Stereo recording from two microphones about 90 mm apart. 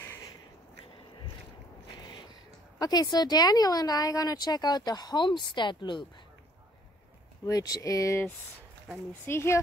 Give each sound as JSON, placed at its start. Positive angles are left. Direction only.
{"t": 2.8, "sound": "speech", "side_deg": 45}
{"t": 7.4, "sound": "speech", "side_deg": 40}
{"t": 9.2, "sound": "speech", "side_deg": 30}